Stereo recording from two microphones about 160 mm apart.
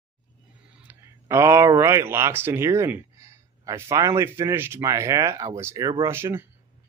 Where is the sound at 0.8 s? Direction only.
15° right (ahead or behind).